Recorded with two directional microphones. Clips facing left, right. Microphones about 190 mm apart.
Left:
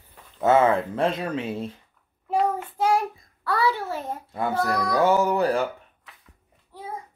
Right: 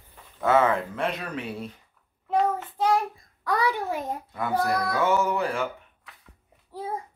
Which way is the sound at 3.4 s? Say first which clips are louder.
Left 1 dB; 15° right (ahead or behind).